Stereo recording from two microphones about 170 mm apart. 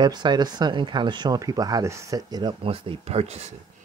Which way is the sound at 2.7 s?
35° right (ahead or behind).